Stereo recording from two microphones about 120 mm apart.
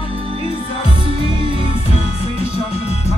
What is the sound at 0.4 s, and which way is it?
Music, 55° left (ahead or behind).